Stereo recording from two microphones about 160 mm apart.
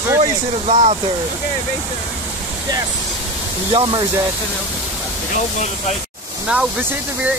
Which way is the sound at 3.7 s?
25° right (ahead or behind).